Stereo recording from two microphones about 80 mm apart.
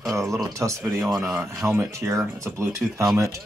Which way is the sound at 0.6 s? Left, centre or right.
Right.